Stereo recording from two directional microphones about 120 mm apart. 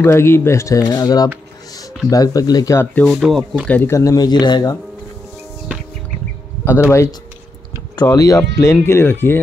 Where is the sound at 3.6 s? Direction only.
15° left (ahead or behind); by 4.7 s 35° left (ahead or behind).